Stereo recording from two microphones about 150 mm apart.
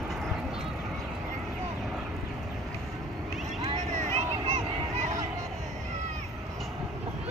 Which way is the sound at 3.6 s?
50° right (ahead or behind).